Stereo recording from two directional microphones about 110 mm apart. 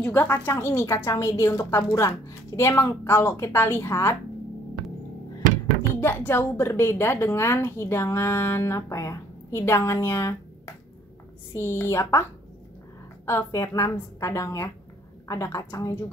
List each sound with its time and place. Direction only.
0.0 s a woman's voice: 15° left (ahead or behind)
5.8 s a woman's voice: 20° left (ahead or behind)
11.5 s a woman's voice: 25° left (ahead or behind)